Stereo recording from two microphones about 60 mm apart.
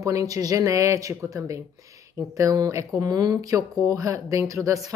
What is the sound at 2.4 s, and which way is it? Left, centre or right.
Speech, right.